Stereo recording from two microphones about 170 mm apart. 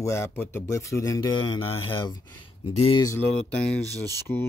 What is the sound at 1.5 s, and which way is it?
Speech, 30° left (ahead or behind).